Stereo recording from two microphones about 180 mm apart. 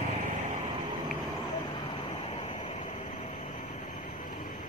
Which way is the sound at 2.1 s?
35° left (ahead or behind).